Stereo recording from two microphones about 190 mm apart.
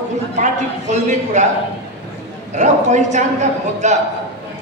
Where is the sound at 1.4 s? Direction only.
40° right (ahead or behind).